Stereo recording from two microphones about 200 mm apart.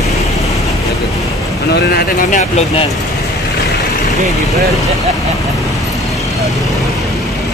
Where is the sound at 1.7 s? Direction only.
45° left (ahead or behind).